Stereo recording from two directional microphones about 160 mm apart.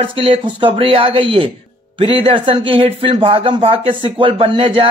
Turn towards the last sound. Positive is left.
turn(degrees=-35)  # may be behind; listen again after turning